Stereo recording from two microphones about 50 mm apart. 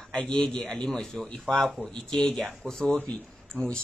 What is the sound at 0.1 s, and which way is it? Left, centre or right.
Speech, centre.